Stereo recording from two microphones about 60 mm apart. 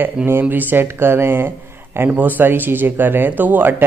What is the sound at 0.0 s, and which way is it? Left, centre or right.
Speech, right.